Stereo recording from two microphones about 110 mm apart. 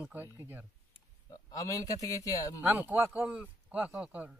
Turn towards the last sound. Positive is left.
turn(degrees=-15)  # may be behind; listen again after turning